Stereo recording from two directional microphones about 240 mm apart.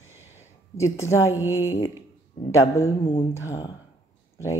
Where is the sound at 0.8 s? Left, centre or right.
Centre.